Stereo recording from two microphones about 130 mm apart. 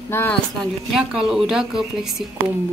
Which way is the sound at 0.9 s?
5° right (ahead or behind).